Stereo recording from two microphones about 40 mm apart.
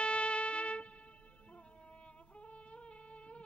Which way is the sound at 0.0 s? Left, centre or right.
Left.